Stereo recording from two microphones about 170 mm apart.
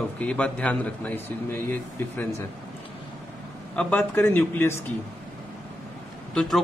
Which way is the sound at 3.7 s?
10° left (ahead or behind).